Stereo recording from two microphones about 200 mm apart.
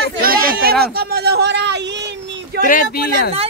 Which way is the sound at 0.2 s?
50° right (ahead or behind).